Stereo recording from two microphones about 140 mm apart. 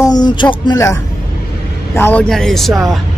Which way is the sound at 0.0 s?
30° left (ahead or behind).